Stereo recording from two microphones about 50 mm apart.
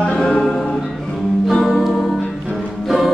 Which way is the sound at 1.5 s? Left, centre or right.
Centre.